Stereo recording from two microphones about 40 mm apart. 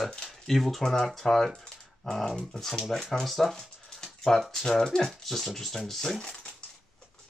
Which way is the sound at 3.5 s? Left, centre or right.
Centre.